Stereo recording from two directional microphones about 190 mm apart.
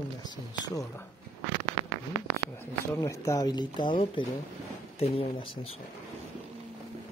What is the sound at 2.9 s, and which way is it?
Speech, 15° left (ahead or behind).